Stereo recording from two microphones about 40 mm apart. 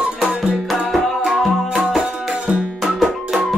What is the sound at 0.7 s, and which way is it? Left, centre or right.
Music, centre.